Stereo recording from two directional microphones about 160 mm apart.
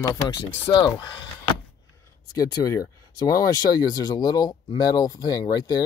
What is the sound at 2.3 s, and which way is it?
Speech, 20° left (ahead or behind).